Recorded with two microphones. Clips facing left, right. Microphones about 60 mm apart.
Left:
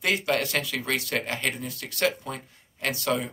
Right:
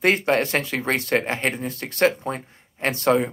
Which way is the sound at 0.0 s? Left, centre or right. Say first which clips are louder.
Right 6 dB; right.